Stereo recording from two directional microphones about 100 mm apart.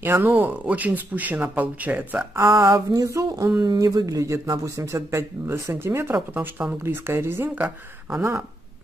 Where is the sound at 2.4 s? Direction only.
35° right (ahead or behind).